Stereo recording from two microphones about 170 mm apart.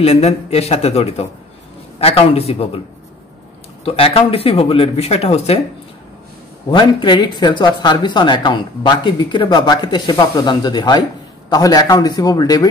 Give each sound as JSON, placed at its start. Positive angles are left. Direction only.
{"t": 0.0, "sound": "speech", "side_deg": 40}
{"t": 3.8, "sound": "speech", "side_deg": 35}
{"t": 6.7, "sound": "speech", "side_deg": 30}